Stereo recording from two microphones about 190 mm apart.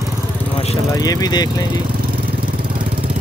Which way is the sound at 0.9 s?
20° left (ahead or behind).